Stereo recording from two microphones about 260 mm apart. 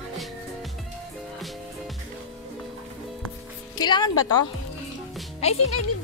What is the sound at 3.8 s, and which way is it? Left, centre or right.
Speech, centre.